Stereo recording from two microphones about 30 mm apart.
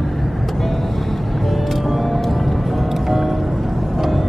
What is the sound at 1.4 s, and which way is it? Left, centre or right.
Music, centre.